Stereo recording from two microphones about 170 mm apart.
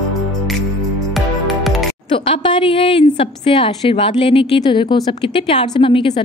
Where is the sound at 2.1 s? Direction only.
30° left (ahead or behind).